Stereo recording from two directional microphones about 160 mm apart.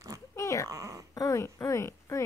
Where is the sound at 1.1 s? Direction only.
20° left (ahead or behind).